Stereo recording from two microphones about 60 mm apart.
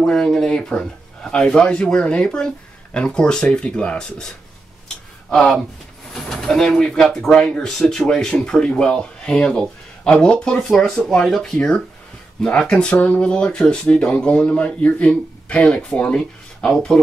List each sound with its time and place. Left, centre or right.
0.0 s speech: centre
5.3 s speech: centre
12.9 s speech: left
13.2 s speech: centre